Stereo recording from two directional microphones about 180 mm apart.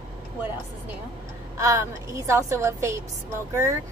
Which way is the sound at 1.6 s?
15° right (ahead or behind).